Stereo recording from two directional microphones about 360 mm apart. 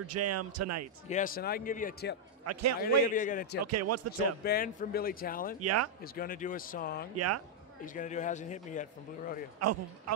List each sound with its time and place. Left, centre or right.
0.0 s a man's voice: right
1.0 s a man's voice: left
2.4 s a man's voice: right
2.8 s a man's voice: left
3.6 s a man's voice: right
4.5 s a man's voice: left
5.6 s a man's voice: right
6.1 s a man's voice: left
7.2 s a man's voice: right
7.8 s a man's voice: left
9.6 s a man's voice: right